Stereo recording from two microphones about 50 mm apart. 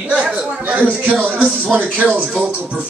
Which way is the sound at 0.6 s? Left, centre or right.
Right.